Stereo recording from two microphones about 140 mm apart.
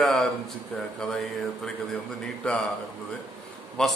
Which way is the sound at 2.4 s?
5° left (ahead or behind).